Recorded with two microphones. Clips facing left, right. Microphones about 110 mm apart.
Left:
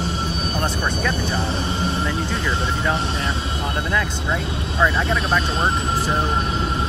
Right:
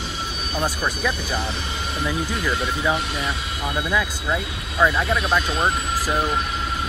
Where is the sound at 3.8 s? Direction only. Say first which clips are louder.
Right 1 dB; centre (ahead or behind).